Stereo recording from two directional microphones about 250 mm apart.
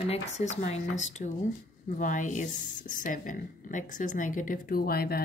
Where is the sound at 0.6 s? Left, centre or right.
Left.